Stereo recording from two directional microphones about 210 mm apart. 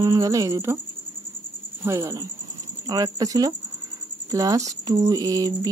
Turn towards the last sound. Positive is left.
turn(degrees=-15)  # may be behind; listen again after turning